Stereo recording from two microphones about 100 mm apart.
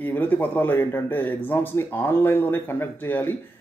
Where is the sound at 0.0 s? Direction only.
15° left (ahead or behind).